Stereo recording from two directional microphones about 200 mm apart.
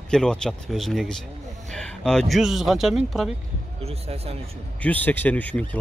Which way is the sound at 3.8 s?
30° right (ahead or behind).